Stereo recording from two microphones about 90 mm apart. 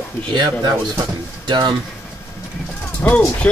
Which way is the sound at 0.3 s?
55° right (ahead or behind).